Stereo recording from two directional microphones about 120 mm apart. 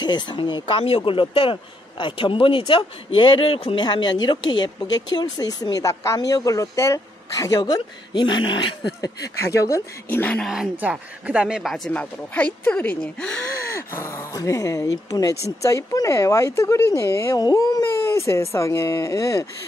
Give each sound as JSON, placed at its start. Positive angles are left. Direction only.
{"t": 0.0, "sound": "speech", "side_deg": 40}
{"t": 9.2, "sound": "speech", "side_deg": 25}
{"t": 10.0, "sound": "speech", "side_deg": 15}
{"t": 10.4, "sound": "speech", "side_deg": -5}
{"t": 11.9, "sound": "speech", "side_deg": 10}
{"t": 13.7, "sound": "speech", "side_deg": 20}